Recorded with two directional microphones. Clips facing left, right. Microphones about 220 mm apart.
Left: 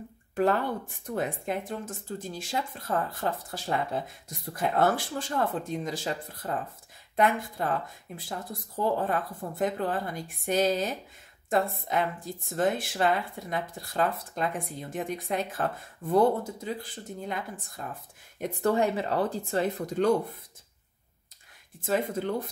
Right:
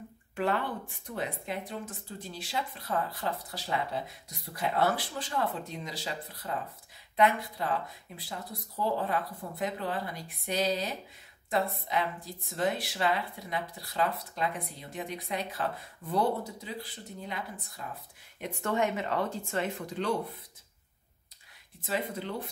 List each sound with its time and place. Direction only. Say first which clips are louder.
0.4 s speech: left 5 dB; 45° left (ahead or behind)
18.4 s speech: left 5 dB; 40° left (ahead or behind)
21.8 s speech: left 6 dB; 45° left (ahead or behind)